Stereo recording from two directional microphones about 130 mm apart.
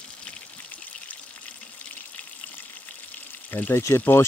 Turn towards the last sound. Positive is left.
turn(degrees=20)  # may be behind; listen again after turning